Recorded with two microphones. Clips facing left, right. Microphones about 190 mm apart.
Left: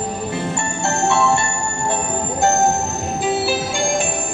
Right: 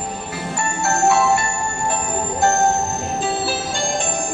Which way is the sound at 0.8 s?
25° left (ahead or behind).